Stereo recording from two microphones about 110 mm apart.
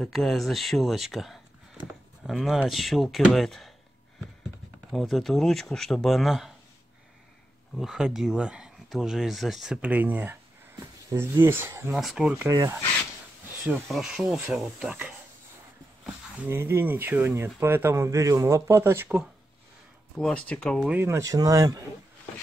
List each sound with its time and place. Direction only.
0.0 s speech: centre (ahead or behind)
4.9 s speech: centre (ahead or behind)
7.7 s speech: 5° right (ahead or behind)
9.8 s speech: 15° right (ahead or behind)
12.0 s speech: centre (ahead or behind)
12.4 s speech: 30° right (ahead or behind)
13.8 s speech: centre (ahead or behind); by 19.0 s 25° right (ahead or behind)
20.2 s speech: 5° left (ahead or behind)
21.0 s speech: 30° right (ahead or behind)